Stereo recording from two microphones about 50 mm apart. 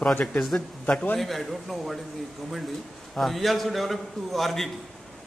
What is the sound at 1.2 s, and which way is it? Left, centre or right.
Speech, centre.